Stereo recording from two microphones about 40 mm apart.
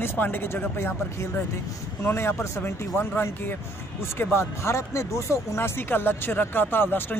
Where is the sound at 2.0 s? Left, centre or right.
Left.